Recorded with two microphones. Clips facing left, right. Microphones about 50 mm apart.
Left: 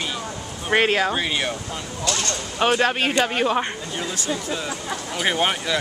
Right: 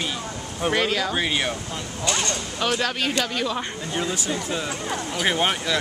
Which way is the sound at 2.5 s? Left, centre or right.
Left.